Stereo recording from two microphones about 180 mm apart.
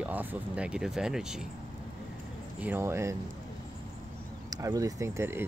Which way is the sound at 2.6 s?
10° right (ahead or behind).